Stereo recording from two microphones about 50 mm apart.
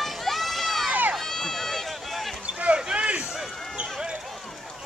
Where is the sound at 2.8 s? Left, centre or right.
Centre.